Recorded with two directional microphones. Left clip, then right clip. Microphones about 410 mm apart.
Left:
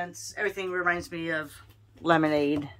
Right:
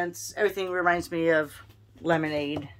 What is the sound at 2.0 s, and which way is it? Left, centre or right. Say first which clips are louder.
Speech: left 3 dB; centre.